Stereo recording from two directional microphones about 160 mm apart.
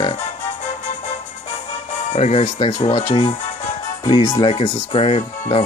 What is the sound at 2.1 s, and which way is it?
Speech, 45° left (ahead or behind).